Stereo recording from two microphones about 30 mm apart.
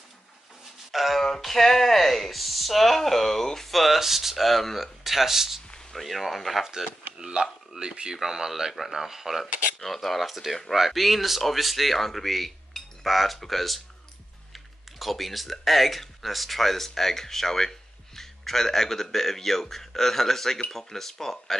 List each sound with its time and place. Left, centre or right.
0.9 s a sound: centre
1.4 s speech: centre
5.0 s speech: centre
5.9 s speech: centre
7.2 s speech: right
8.1 s speech: centre
9.8 s speech: centre
15.0 s speech: centre